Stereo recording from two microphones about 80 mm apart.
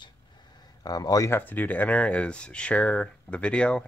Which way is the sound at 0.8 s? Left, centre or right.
Left.